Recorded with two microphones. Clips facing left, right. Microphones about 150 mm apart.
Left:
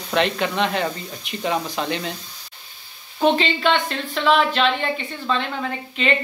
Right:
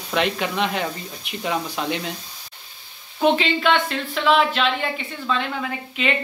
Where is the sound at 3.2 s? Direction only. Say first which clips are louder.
Even; 5° right (ahead or behind).